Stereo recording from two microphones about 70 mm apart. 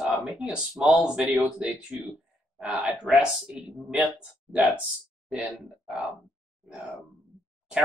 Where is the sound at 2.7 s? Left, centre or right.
Centre.